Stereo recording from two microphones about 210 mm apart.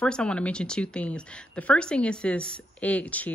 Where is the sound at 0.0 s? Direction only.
5° left (ahead or behind).